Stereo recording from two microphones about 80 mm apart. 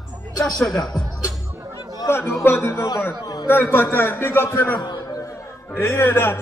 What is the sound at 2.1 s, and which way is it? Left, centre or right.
A man's voice, left.